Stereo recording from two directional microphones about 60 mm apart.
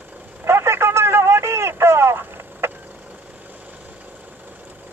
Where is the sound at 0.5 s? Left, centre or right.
Right.